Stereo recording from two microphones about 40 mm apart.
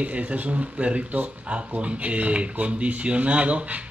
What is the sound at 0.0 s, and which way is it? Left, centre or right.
Speech, right.